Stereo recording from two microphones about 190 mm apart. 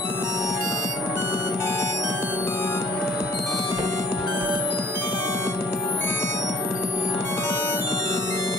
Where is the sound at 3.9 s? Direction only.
20° left (ahead or behind).